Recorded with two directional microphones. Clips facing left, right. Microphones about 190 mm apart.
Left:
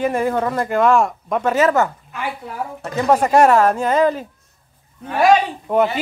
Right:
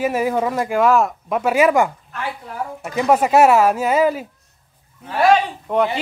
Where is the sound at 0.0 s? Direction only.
5° right (ahead or behind).